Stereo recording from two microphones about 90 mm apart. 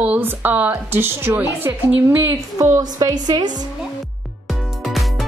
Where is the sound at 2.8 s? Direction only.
45° right (ahead or behind).